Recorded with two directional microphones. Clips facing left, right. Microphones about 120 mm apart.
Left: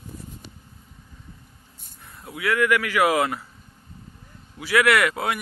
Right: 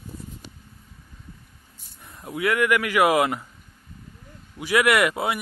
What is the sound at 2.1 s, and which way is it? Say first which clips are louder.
Speech: right 1 dB; 25° right (ahead or behind).